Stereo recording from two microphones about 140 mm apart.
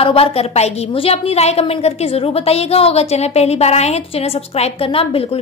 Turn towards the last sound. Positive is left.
turn(degrees=45)  # may be behind; listen again after turning